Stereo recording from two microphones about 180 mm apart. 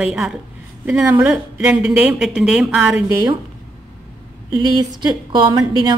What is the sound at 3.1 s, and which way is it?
Speech, 20° right (ahead or behind).